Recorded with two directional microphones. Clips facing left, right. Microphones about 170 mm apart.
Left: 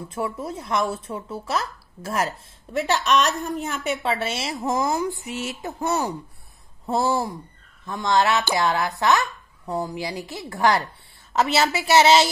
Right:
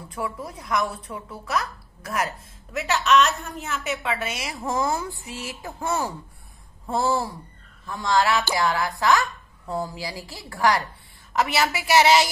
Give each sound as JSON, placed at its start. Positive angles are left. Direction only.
{"t": 0.1, "sound": "a woman's voice", "side_deg": 25}